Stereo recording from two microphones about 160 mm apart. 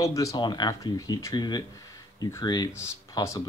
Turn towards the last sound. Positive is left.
turn(degrees=20)  # may be behind; listen again after turning